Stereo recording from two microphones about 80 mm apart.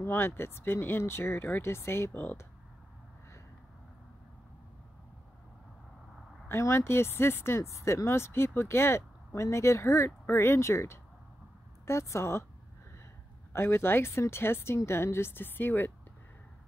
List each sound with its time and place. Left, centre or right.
0.0 s a woman's voice: left
6.6 s speech: left
13.5 s a woman's voice: left